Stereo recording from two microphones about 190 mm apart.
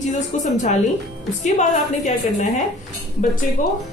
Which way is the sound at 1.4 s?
40° left (ahead or behind).